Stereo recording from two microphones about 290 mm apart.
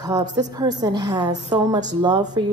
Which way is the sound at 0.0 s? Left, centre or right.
Centre.